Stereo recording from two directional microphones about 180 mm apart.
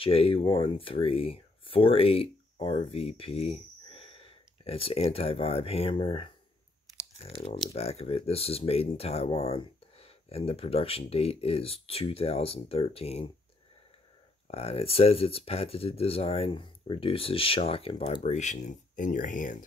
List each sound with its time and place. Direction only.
0.0 s speech: 30° left (ahead or behind)
14.5 s speech: 35° left (ahead or behind)